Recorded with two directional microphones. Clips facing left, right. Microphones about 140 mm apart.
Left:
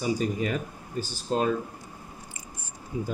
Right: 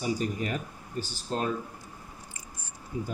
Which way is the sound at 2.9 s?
90° left.